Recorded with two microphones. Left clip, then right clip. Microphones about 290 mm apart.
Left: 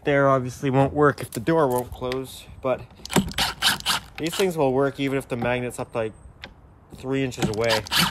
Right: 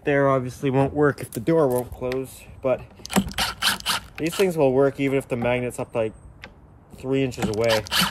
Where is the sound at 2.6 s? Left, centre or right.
Centre.